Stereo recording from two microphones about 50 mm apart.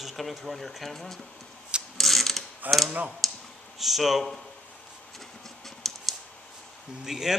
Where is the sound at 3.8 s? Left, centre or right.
Centre.